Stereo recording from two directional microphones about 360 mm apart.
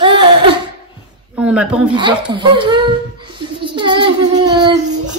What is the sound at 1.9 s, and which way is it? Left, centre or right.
Speech, centre.